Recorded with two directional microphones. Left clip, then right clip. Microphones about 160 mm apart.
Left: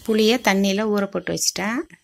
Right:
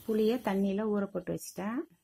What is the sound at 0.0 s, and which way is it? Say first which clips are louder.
Speech: left 12 dB; 15° left (ahead or behind).